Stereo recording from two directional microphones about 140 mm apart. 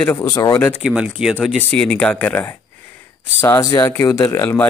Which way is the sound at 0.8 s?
5° right (ahead or behind).